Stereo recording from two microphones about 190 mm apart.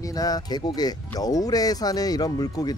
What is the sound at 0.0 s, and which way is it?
Speech, 20° left (ahead or behind).